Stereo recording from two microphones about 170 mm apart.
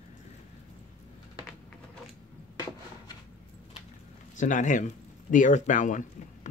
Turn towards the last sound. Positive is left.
turn(degrees=50)  # may be behind; listen again after turning